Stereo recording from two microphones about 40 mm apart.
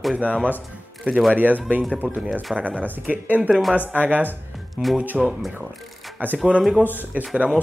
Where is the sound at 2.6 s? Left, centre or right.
Right.